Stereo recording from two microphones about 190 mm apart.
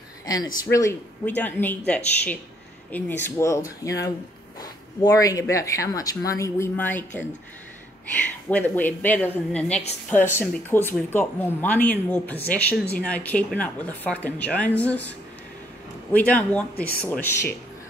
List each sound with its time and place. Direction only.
0.7 s speech: 15° left (ahead or behind)
8.5 s speech: 10° left (ahead or behind)